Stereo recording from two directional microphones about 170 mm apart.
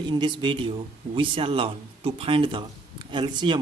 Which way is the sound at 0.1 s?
25° right (ahead or behind).